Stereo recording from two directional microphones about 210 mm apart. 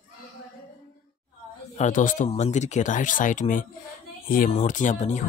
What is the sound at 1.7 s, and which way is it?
Speech, 35° left (ahead or behind).